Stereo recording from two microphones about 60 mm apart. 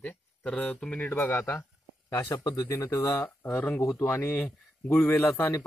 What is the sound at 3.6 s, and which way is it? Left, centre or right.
Speech, left.